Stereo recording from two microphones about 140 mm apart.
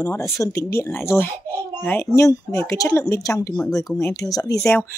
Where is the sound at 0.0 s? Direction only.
20° left (ahead or behind).